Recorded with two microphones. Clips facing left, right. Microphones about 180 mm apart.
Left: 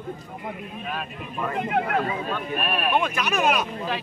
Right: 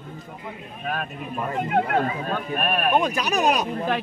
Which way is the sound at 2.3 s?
45° right (ahead or behind).